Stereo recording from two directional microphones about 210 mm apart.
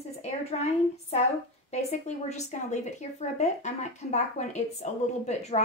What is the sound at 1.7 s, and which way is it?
A woman's voice, 30° left (ahead or behind).